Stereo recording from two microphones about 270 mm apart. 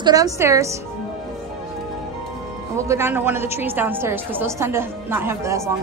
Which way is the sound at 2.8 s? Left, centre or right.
Centre.